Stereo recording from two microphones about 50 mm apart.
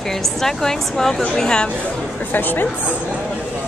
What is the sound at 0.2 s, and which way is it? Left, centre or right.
Speech, centre.